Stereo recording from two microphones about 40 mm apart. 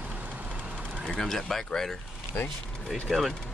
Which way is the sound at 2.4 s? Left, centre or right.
Left.